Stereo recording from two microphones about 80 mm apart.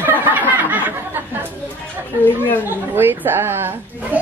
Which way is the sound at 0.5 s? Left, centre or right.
Right.